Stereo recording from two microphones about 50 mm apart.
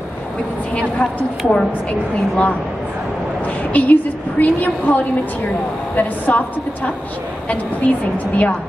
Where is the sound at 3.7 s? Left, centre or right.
Left.